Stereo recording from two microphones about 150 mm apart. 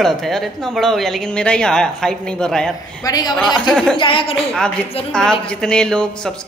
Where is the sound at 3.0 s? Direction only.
25° left (ahead or behind).